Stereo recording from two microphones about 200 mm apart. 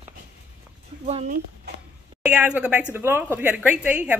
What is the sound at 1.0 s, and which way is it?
Speech, 30° right (ahead or behind).